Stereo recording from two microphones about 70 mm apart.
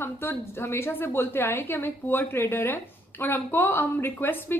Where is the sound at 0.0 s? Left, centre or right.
Left.